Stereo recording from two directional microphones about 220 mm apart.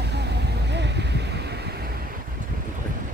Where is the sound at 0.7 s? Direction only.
50° right (ahead or behind).